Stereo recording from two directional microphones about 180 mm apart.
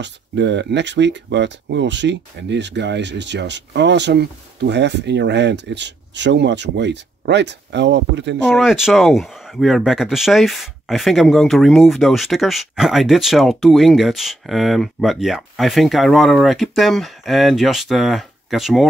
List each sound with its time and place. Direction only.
0.0 s speech: 75° right (ahead or behind)
8.5 s speech: centre (ahead or behind)